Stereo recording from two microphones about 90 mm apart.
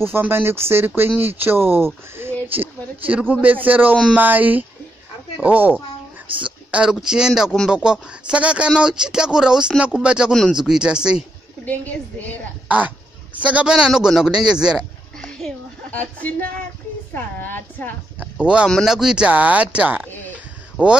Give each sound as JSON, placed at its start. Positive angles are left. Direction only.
{"t": 0.0, "sound": "speech", "side_deg": -25}
{"t": 11.6, "sound": "a woman's voice", "side_deg": 20}
{"t": 12.6, "sound": "speech", "side_deg": -15}
{"t": 15.1, "sound": "a sound", "side_deg": 5}
{"t": 15.9, "sound": "a woman's voice", "side_deg": 20}
{"t": 18.2, "sound": "speech", "side_deg": -10}